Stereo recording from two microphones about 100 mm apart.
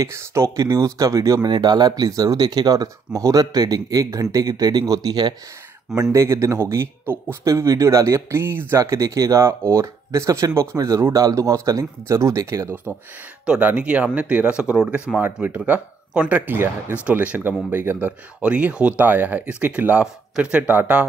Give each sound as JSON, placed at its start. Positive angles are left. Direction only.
{"t": 0.0, "sound": "speech", "side_deg": -30}
{"t": 6.1, "sound": "speech", "side_deg": -30}
{"t": 13.5, "sound": "speech", "side_deg": -15}